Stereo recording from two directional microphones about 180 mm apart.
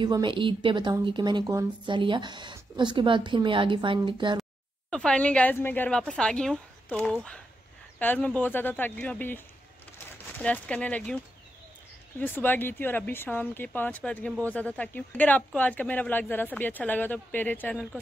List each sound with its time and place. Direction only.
0.0 s a woman's voice: 25° right (ahead or behind)
4.9 s a woman's voice: 5° left (ahead or behind)
12.2 s speech: 10° left (ahead or behind)